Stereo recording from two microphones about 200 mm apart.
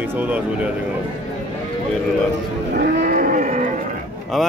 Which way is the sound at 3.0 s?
45° right (ahead or behind).